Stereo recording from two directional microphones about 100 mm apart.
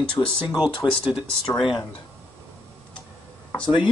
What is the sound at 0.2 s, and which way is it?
Speech, 40° left (ahead or behind).